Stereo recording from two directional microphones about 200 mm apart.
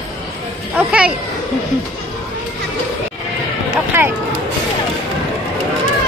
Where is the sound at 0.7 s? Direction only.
5° right (ahead or behind).